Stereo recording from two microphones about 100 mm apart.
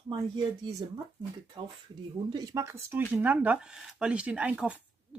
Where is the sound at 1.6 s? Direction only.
40° right (ahead or behind).